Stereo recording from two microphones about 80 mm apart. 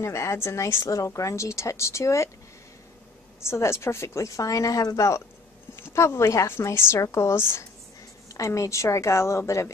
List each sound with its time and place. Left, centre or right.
0.0 s a woman's voice: left
3.3 s a woman's voice: left
8.3 s a woman's voice: left